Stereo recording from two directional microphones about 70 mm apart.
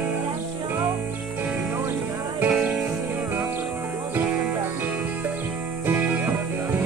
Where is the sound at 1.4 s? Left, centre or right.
Centre.